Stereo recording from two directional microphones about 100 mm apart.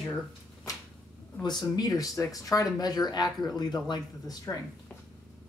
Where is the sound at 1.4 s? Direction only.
45° left (ahead or behind).